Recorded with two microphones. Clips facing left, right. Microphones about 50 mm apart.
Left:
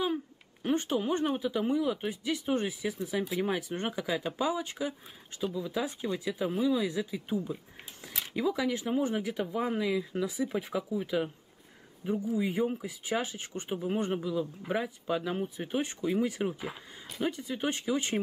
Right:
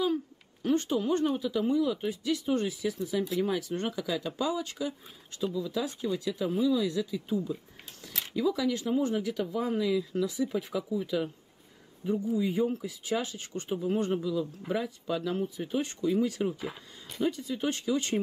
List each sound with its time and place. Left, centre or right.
0.0 s a sound: left
0.9 s speech: left
8.1 s a sound: centre
8.4 s speech: left
16.6 s speech: centre
17.3 s speech: left